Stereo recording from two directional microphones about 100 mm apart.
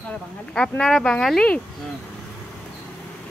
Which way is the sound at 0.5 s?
10° left (ahead or behind).